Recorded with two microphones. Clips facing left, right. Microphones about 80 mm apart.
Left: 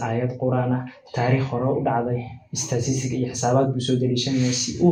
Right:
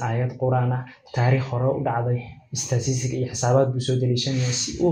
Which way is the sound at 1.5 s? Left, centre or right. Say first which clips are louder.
Left 1 dB; centre.